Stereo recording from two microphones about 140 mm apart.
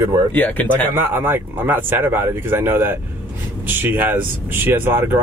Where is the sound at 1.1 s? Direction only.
15° right (ahead or behind).